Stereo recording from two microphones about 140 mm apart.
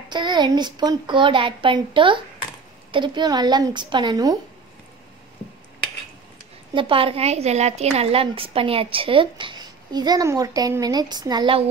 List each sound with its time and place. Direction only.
0.1 s a woman's voice: 30° right (ahead or behind)
6.7 s a woman's voice: 40° right (ahead or behind)